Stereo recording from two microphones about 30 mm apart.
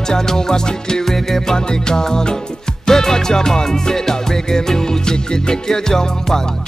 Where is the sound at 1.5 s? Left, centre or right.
Left.